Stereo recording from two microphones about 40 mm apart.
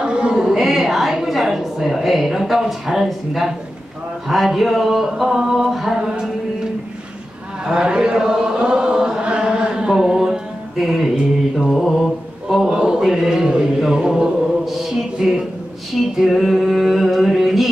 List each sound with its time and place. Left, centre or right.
0.0 s a sound: right
0.5 s a woman's voice: centre
4.3 s a sound: centre
6.0 s music: centre
7.6 s chant: right
11.7 s mantra: centre
12.6 s a sound: centre
14.0 s chant: centre
14.6 s music: centre
16.2 s mantra: centre